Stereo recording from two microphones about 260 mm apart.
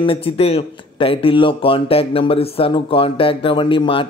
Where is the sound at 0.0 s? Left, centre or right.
Left.